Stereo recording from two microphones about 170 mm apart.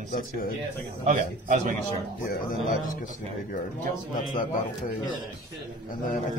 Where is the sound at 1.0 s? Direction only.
50° right (ahead or behind).